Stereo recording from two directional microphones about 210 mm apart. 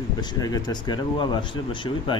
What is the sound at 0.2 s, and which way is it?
Speech, 20° left (ahead or behind).